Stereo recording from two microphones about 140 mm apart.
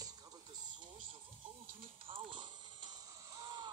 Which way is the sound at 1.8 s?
40° right (ahead or behind).